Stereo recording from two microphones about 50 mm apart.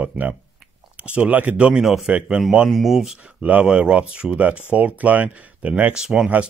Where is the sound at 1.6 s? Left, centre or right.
Centre.